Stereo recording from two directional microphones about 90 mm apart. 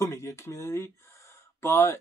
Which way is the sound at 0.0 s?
30° left (ahead or behind).